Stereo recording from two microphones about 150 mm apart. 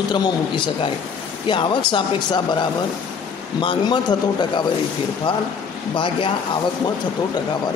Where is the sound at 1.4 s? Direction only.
35° left (ahead or behind).